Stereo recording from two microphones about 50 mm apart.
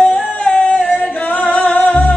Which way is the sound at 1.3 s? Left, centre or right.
Left.